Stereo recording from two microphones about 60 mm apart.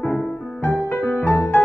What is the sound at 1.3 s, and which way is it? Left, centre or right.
Music, left.